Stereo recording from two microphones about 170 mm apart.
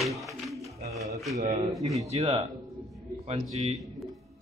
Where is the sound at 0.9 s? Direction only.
20° right (ahead or behind).